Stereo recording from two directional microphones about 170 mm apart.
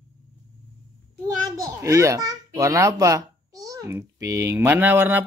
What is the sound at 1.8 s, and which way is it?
A child's voice, 20° right (ahead or behind).